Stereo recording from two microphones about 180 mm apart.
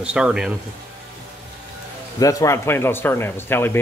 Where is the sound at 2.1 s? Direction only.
20° left (ahead or behind).